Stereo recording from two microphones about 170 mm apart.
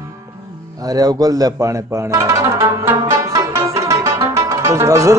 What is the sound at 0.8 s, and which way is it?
Speech, 20° right (ahead or behind).